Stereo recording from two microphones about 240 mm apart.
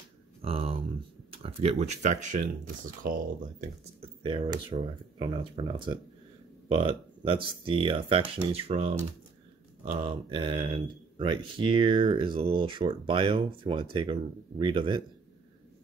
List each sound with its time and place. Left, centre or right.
0.4 s a sound: right
1.3 s speech: right
4.0 s speech: right